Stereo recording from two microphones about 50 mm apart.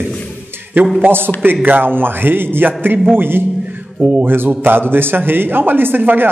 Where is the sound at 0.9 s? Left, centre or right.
Right.